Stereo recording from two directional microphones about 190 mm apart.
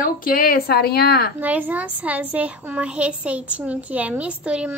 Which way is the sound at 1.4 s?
10° right (ahead or behind).